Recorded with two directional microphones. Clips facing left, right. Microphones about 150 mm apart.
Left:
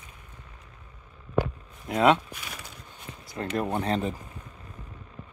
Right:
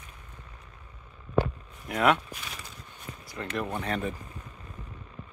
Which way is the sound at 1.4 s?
20° left (ahead or behind).